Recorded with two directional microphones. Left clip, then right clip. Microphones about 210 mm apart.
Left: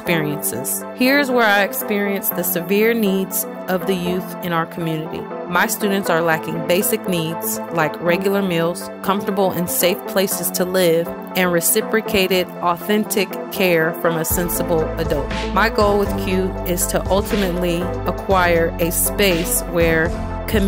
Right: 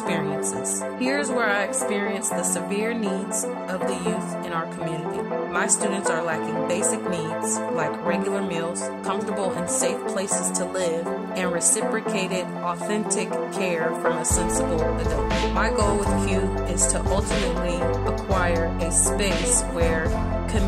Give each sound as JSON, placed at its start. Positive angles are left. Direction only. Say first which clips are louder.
{"t": 0.9, "sound": "speech", "louder": "left 9 dB", "side_deg": 40}
{"t": 15.5, "sound": "speech", "louder": "left 10 dB", "side_deg": 35}